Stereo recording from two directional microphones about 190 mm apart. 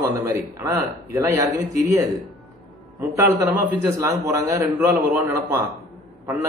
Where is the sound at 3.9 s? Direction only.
15° right (ahead or behind).